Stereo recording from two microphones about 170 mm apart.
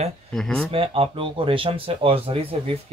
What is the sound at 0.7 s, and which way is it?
Speech, 35° right (ahead or behind).